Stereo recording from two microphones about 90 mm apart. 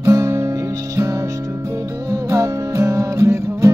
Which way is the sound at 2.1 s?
35° right (ahead or behind).